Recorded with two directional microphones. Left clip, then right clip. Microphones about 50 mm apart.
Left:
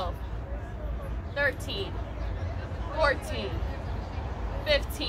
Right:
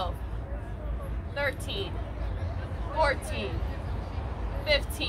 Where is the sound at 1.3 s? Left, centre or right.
Centre.